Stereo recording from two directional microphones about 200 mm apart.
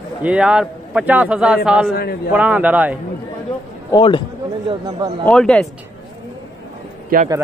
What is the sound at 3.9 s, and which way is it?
Speech, 25° left (ahead or behind).